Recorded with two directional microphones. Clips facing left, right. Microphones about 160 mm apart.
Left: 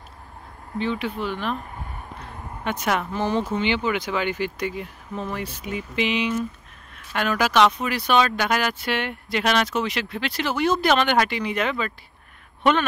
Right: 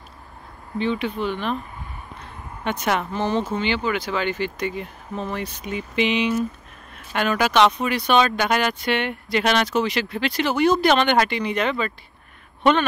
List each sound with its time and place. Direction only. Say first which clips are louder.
0.7 s speech: right 2 dB; 5° left (ahead or behind)
2.6 s speech: right 1 dB; 5° left (ahead or behind)